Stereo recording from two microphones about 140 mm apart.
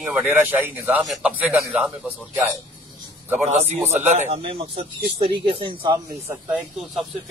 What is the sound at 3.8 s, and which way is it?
Speech, 55° right (ahead or behind).